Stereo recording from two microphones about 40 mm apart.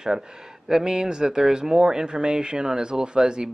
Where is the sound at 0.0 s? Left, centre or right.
Centre.